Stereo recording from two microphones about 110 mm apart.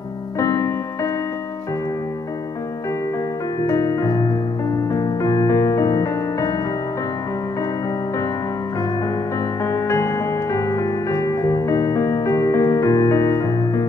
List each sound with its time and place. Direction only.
0.4 s music: 30° left (ahead or behind)
3.6 s keyboard: 35° left (ahead or behind)
4.9 s music: 30° left (ahead or behind)
9.7 s music: 25° left (ahead or behind)